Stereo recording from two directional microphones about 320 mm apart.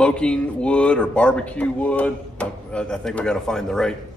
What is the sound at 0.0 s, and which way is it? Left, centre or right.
Speech, centre.